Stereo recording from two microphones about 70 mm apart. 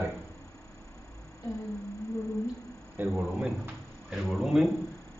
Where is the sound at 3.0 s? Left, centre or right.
Right.